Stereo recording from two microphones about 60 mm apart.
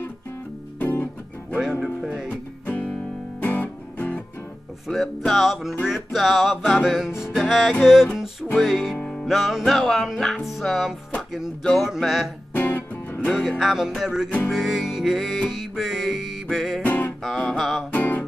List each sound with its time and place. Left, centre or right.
0.7 s music: left
1.6 s music: centre
2.2 s music: left
4.8 s music: centre
12.5 s music: left
13.3 s music: centre
16.8 s music: left
17.2 s music: centre
17.9 s music: left